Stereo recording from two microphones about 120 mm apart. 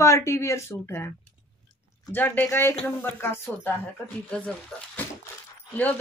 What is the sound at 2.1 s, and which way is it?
Speech, 15° left (ahead or behind).